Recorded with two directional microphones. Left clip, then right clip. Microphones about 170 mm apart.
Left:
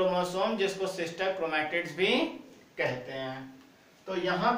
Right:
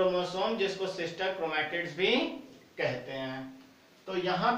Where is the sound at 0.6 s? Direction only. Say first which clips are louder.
Left 1 dB; 20° left (ahead or behind).